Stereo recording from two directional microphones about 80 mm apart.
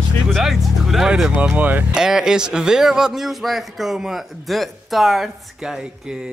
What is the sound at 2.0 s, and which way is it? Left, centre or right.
A man's voice, centre.